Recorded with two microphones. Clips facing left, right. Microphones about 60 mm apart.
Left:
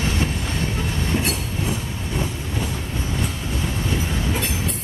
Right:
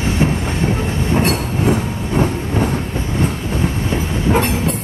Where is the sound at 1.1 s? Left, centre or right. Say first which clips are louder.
Right 10 dB; right.